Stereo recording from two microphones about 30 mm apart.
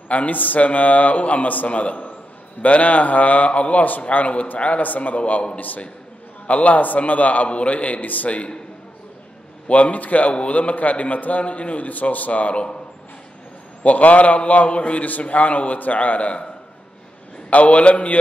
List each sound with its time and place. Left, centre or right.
0.1 s a man's voice: left
1.7 s a man's voice: left
4.8 s a man's voice: left
7.4 s a man's voice: left
9.7 s a man's voice: left
11.9 s a man's voice: left
13.8 s a man's voice: left
15.0 s a man's voice: left
17.5 s a man's voice: left